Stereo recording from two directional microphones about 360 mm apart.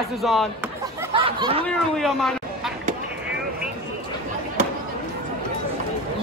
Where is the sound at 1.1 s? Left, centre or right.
Centre.